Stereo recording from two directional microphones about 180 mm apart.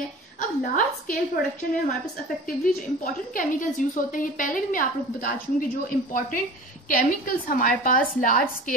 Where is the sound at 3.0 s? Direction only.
50° left (ahead or behind).